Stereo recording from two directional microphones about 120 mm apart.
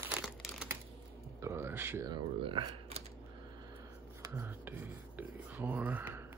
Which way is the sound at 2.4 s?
45° right (ahead or behind).